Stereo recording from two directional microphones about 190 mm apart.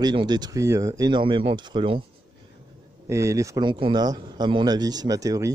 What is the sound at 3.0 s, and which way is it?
Speech, 15° right (ahead or behind).